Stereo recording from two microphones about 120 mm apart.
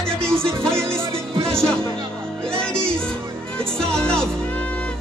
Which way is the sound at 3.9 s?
5° left (ahead or behind).